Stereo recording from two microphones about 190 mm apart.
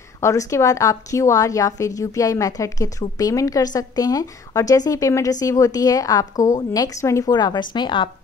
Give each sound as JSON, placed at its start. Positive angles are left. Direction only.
{"t": 0.2, "sound": "a woman's voice", "side_deg": 15}